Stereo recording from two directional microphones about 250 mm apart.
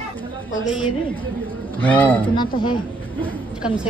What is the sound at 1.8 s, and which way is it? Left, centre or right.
Speech, centre.